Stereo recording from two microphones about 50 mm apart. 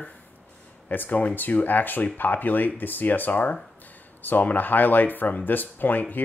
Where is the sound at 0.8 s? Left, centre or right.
Left.